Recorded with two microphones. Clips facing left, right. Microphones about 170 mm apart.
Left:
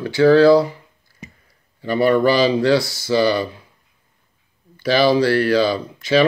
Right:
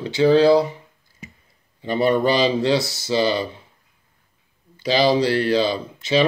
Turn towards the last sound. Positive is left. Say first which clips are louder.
# left 3 dB
turn(degrees=-20)  # may be behind; listen again after turning